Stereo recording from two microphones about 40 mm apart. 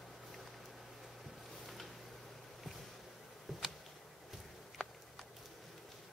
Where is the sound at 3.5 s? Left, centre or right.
Centre.